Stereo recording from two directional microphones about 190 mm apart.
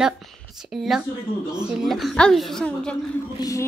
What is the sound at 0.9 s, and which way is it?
Speech, centre (ahead or behind).